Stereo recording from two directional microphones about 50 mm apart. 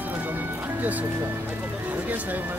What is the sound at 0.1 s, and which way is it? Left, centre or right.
Music, right.